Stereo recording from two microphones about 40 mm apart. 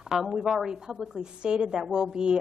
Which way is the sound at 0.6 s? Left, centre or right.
Centre.